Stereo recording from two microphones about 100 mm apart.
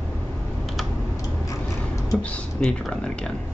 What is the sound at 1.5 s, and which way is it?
Tick-tock, 35° left (ahead or behind).